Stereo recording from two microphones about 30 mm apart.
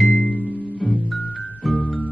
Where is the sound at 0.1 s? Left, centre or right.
Left.